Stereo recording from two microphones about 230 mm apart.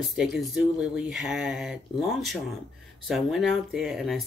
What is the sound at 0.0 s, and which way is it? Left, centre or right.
Speech, centre.